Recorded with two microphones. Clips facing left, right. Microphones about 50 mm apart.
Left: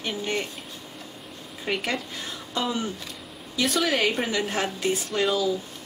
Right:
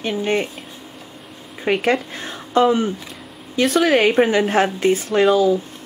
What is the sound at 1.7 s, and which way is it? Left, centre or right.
Speech, right.